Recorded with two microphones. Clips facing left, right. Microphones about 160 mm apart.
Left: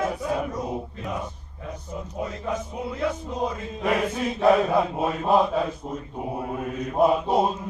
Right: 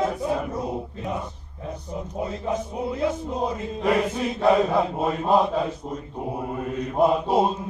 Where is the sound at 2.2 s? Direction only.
25° right (ahead or behind).